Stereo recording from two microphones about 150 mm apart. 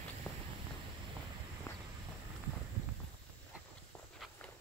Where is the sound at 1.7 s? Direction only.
15° left (ahead or behind).